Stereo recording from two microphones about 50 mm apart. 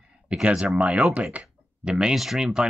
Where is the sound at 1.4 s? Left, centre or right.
Centre.